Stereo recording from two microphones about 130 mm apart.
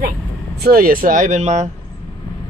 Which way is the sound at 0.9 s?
90° right.